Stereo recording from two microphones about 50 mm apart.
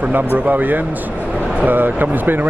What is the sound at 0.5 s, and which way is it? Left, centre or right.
Speech, right.